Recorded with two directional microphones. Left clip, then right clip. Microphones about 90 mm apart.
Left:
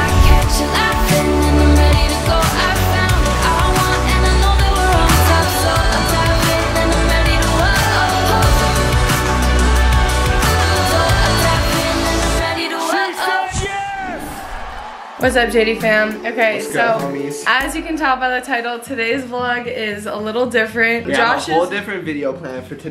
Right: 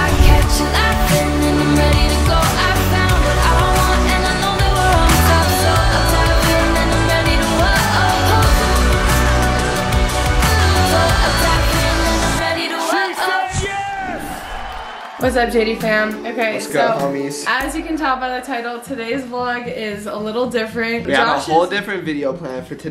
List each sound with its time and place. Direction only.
0.2 s music: centre (ahead or behind)
10.1 s music: centre (ahead or behind)
15.2 s a woman's voice: 5° left (ahead or behind)
20.3 s a woman's voice: 5° left (ahead or behind)
21.5 s speech: 20° right (ahead or behind)